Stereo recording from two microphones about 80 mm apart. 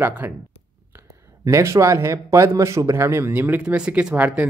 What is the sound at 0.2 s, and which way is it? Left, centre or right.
Speech, centre.